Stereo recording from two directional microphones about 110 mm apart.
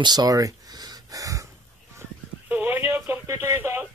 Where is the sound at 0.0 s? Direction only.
40° right (ahead or behind).